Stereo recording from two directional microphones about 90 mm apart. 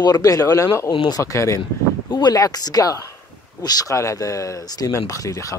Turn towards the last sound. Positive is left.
turn(degrees=35)  # may be behind; listen again after turning